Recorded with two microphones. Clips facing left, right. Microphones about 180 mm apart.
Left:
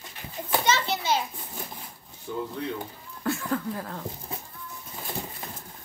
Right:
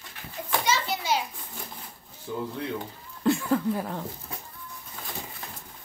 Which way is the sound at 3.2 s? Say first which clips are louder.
Right 5 dB; 15° right (ahead or behind).